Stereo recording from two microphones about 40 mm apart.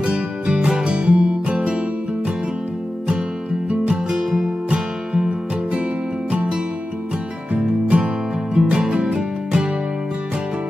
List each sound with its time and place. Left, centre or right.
0.0 s music: right
3.7 s music: right
4.1 s music: centre
4.6 s music: right
7.5 s music: right